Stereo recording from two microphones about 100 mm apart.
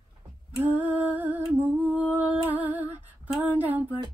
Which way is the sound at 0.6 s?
15° right (ahead or behind).